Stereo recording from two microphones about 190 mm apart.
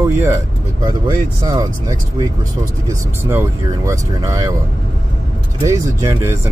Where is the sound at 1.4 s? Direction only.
20° right (ahead or behind).